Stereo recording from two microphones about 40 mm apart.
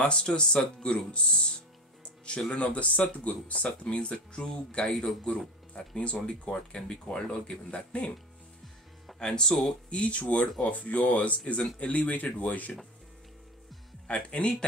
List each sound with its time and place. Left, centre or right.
0.0 s speech: left
2.0 s music: left
2.5 s speech: left
3.6 s speech: left
5.9 s speech: left
9.2 s speech: centre; by 12.7 s left
14.0 s speech: left